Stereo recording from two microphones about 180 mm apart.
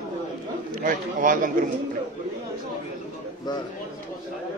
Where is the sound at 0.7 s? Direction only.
50° right (ahead or behind).